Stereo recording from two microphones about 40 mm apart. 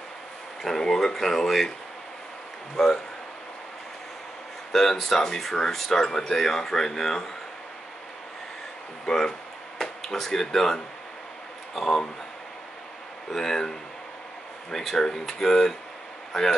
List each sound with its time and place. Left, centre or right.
0.6 s speech: centre
2.8 s speech: centre
4.7 s speech: centre
9.0 s speech: centre
13.3 s speech: centre